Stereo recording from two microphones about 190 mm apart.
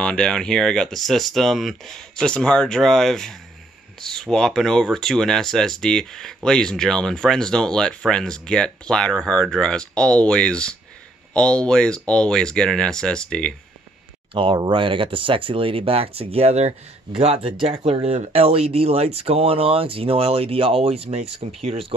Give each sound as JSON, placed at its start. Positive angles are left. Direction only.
{"t": 0.0, "sound": "speech", "side_deg": 5}
{"t": 14.3, "sound": "speech", "side_deg": -30}